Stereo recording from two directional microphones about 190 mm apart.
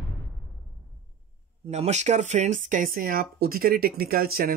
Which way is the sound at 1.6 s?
35° right (ahead or behind).